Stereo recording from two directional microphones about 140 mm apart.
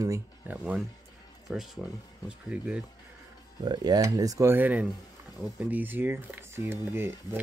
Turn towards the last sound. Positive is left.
turn(degrees=-15)  # may be behind; listen again after turning